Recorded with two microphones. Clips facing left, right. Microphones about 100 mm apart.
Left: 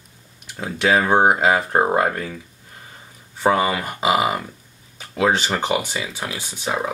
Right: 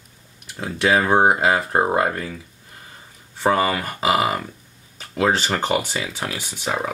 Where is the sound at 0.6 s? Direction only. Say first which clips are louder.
Even; 15° left (ahead or behind).